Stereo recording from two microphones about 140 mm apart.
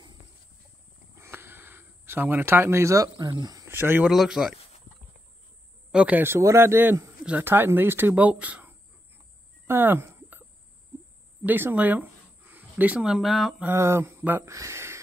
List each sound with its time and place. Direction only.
1.1 s a sound: 15° right (ahead or behind)
4.1 s speech: 5° right (ahead or behind)
5.9 s a man's voice: 10° right (ahead or behind)
9.7 s a sound: 15° right (ahead or behind)
11.4 s speech: 15° right (ahead or behind)
13.7 s speech: 20° right (ahead or behind)